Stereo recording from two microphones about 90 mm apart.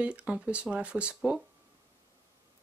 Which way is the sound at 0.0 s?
10° right (ahead or behind).